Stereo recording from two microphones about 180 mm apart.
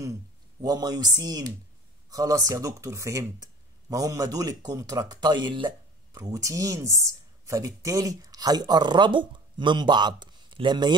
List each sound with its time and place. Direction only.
0.6 s speech: 20° right (ahead or behind)